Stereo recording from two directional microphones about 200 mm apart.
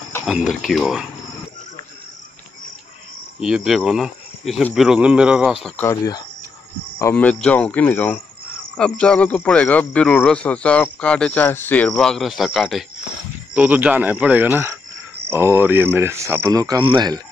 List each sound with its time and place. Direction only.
0.2 s speech: centre (ahead or behind)
3.3 s speech: centre (ahead or behind)
5.8 s speech: 15° left (ahead or behind); by 17.2 s 20° right (ahead or behind)